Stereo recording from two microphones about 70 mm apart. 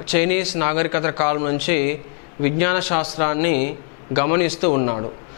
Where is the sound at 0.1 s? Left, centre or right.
Centre.